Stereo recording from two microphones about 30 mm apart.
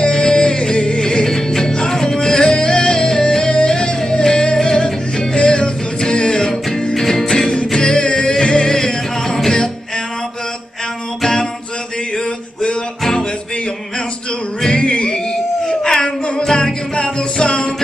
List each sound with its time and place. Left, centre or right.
0.0 s music: left
14.8 s music: left